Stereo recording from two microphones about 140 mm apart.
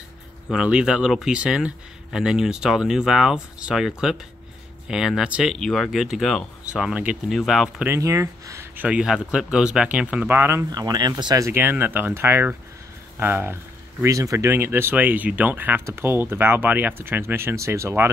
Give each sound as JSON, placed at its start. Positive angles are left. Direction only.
{"t": 0.5, "sound": "speech", "side_deg": -5}
{"t": 7.8, "sound": "speech", "side_deg": -20}
{"t": 8.8, "sound": "speech", "side_deg": -5}
{"t": 10.7, "sound": "speech", "side_deg": -30}